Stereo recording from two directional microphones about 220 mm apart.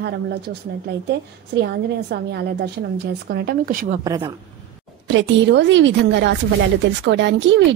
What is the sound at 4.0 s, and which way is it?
Speech, 15° right (ahead or behind).